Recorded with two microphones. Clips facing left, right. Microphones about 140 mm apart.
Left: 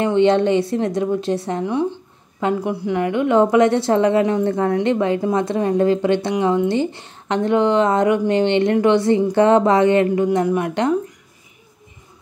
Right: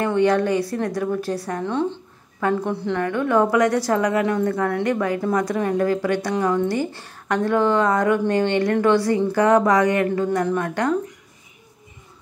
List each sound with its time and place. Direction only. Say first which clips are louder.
0.0 s a woman's voice: left 3 dB; 20° left (ahead or behind)
10.2 s speech: left 3 dB; 15° left (ahead or behind)